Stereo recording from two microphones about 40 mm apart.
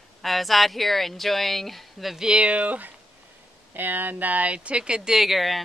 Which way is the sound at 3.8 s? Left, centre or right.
Right.